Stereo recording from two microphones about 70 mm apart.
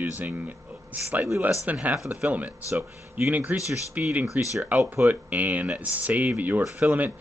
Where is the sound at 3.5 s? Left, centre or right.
Right.